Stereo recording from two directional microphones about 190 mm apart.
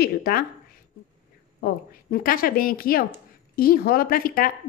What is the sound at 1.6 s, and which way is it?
A woman's voice, 50° left (ahead or behind).